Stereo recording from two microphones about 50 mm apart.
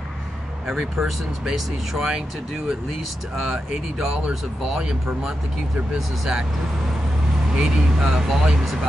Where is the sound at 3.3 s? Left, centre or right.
Centre.